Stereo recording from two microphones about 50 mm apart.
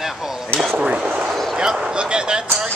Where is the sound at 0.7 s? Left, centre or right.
Right.